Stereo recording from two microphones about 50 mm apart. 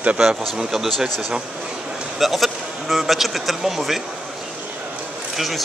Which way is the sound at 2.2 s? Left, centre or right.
Centre.